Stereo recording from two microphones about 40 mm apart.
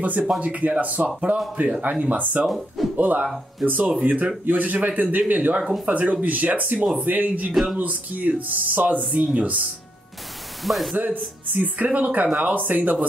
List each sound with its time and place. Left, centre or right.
0.4 s speech: right
10.6 s speech: centre
11.0 s speech: right